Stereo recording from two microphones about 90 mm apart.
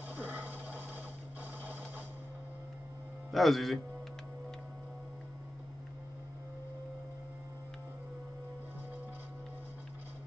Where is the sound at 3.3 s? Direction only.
Centre (ahead or behind).